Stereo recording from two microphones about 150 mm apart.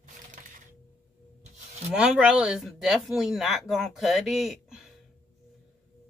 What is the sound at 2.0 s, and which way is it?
Speech, 5° right (ahead or behind).